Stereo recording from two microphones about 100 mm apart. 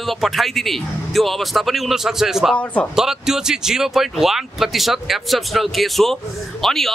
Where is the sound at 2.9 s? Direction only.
5° right (ahead or behind).